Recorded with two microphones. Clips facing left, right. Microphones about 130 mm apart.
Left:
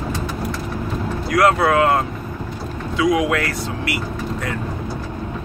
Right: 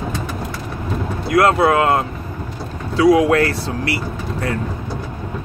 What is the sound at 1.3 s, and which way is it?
Speech, 25° right (ahead or behind).